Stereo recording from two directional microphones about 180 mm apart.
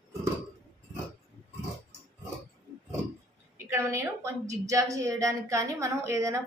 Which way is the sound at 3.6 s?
15° right (ahead or behind).